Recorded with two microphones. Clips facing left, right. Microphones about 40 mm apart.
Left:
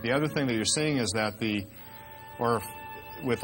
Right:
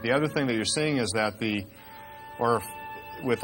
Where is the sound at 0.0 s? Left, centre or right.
Centre.